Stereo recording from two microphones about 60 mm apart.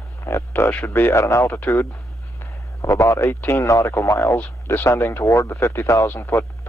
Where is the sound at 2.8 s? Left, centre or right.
Left.